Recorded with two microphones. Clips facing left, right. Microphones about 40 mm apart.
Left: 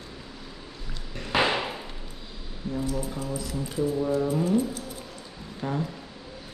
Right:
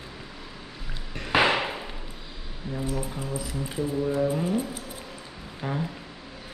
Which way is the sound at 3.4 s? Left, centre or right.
Centre.